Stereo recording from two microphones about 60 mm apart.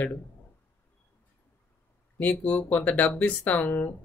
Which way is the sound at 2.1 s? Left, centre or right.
Left.